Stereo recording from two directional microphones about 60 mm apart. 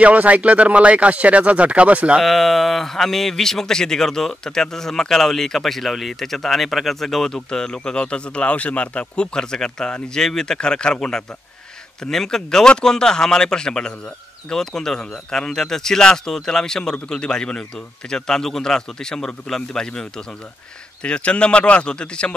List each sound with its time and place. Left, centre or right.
0.0 s speech: right
2.2 s speech: centre